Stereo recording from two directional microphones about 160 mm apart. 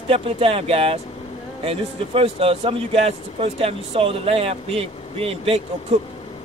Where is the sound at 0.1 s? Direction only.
35° right (ahead or behind).